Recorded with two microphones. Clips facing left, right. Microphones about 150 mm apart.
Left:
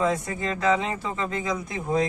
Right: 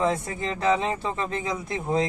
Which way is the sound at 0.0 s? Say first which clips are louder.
Even; 25° right (ahead or behind).